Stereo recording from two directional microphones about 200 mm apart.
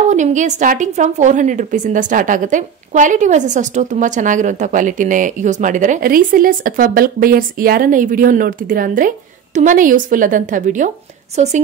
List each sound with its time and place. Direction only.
0.1 s a woman's voice: 40° right (ahead or behind)